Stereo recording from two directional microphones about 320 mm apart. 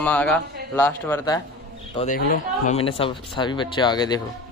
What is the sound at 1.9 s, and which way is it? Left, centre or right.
Speech, left.